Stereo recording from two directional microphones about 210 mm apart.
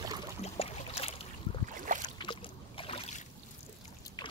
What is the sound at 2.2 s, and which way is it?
Boat, 25° left (ahead or behind).